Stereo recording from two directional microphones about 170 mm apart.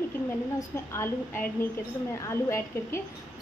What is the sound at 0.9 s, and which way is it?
A woman's voice, 15° left (ahead or behind).